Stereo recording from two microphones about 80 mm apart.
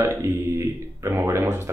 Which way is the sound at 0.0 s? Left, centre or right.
Right.